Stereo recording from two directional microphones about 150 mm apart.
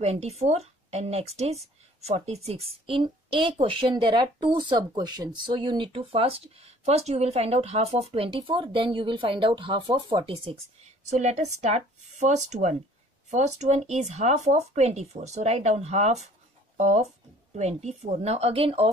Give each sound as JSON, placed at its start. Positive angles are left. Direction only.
{"t": 0.0, "sound": "speech", "side_deg": -45}
{"t": 11.1, "sound": "speech", "side_deg": -50}